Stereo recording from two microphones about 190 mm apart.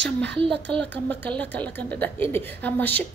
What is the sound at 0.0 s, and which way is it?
Speech, 65° right (ahead or behind).